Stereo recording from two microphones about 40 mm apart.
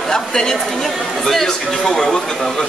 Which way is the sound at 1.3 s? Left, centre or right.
Centre.